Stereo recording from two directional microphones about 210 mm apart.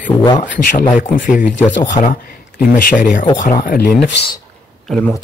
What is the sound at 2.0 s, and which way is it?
Speech, 20° left (ahead or behind).